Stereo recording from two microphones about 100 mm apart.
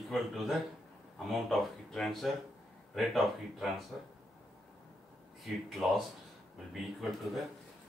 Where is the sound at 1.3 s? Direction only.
Centre (ahead or behind).